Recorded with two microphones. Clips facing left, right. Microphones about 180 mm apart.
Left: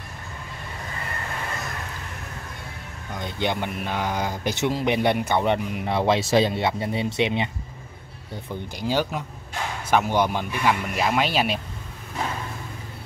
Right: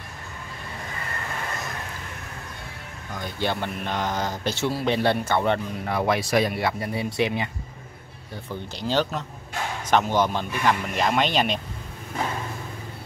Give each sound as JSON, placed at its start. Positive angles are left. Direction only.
{"t": 3.2, "sound": "speech", "side_deg": 20}
{"t": 8.7, "sound": "speech", "side_deg": 10}